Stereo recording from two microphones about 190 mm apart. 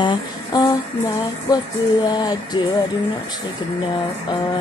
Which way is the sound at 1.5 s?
20° left (ahead or behind).